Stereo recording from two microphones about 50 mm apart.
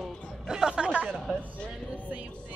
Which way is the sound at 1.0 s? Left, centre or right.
Centre.